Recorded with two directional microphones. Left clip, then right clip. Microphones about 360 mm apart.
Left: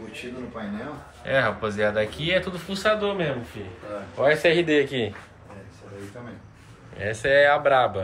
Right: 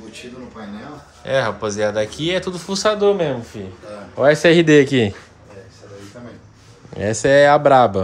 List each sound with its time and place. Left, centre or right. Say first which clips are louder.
1.2 s speech: right 4 dB; centre; by 5.1 s right
7.0 s speech: right 6 dB; centre